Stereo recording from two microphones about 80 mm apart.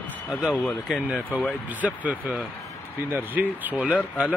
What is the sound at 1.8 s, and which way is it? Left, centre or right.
Speech, centre.